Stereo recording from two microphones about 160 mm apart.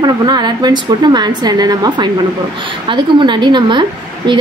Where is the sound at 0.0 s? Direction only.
25° right (ahead or behind).